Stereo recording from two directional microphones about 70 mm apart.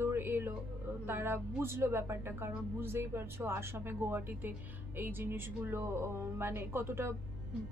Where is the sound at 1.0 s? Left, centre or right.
Right.